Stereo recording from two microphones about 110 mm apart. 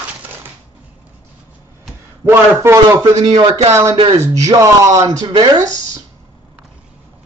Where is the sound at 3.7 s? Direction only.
25° right (ahead or behind).